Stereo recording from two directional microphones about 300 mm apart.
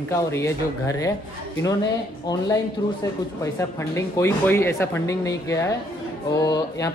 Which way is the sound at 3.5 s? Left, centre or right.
Centre.